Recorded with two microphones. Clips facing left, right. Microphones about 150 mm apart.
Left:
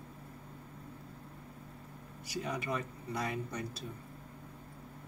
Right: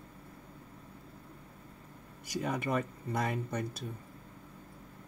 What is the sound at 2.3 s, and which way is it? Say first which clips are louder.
Speech: right 4 dB; 50° right (ahead or behind).